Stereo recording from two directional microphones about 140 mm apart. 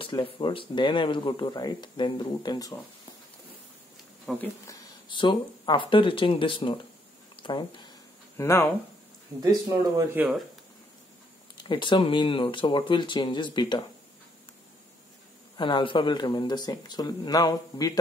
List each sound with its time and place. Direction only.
0.0 s speech: 40° left (ahead or behind)
4.3 s speech: 5° left (ahead or behind)
4.6 s speech: 30° left (ahead or behind)
8.4 s speech: 15° left (ahead or behind)
9.4 s speech: 25° right (ahead or behind)
10.1 s speech: 10° right (ahead or behind)
11.5 s speech: 35° left (ahead or behind)
15.5 s speech: 35° left (ahead or behind)